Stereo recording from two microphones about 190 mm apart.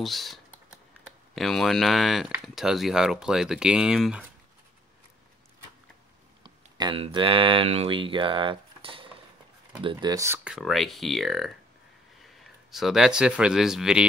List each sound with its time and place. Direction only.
0.0 s speech: centre (ahead or behind)
6.4 s speech: 25° right (ahead or behind); by 14.0 s 5° right (ahead or behind)